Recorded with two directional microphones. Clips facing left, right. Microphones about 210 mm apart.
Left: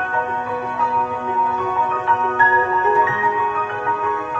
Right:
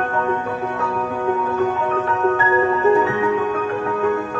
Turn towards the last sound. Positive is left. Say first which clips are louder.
# right 4 dB
turn(degrees=-45)  # may be behind; listen again after turning